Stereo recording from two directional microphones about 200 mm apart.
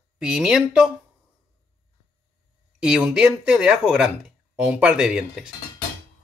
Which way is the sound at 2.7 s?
5° right (ahead or behind).